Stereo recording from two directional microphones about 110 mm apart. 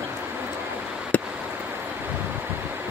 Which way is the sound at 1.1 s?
15° left (ahead or behind).